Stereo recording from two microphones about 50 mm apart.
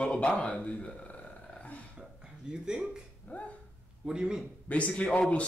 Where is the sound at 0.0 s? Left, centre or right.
Left.